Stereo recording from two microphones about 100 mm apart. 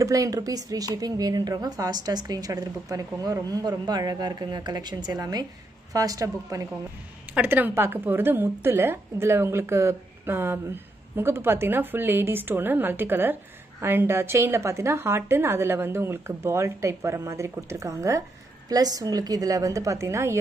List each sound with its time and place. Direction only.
0.0 s a woman's voice: 35° right (ahead or behind)
7.3 s a woman's voice: 20° right (ahead or behind)